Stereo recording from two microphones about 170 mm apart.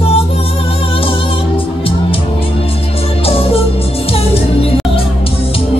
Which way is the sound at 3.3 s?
35° left (ahead or behind).